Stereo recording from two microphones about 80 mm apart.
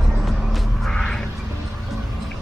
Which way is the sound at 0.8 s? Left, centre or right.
Centre.